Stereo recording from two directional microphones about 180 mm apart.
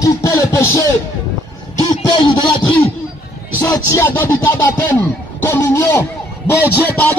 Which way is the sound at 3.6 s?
15° left (ahead or behind).